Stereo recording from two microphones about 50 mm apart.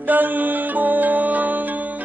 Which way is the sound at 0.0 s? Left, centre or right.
Right.